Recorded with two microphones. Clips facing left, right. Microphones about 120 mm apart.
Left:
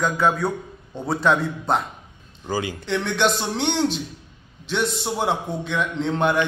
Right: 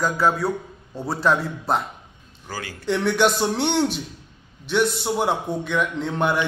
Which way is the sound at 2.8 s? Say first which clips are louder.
Right 4 dB; 10° right (ahead or behind).